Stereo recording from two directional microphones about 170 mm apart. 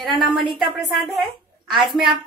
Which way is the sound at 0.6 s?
Centre (ahead or behind).